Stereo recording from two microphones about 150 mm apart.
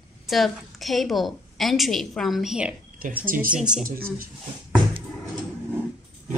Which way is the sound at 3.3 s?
65° right (ahead or behind).